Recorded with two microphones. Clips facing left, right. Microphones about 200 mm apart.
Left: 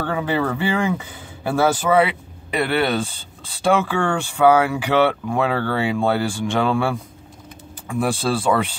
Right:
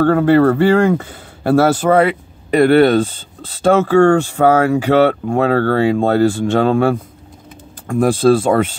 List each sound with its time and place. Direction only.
0.0 s speech: 55° right (ahead or behind)
1.8 s speech: 45° right (ahead or behind)